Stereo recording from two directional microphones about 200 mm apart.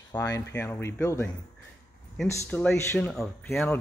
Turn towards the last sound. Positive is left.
turn(degrees=5)  # may be behind; listen again after turning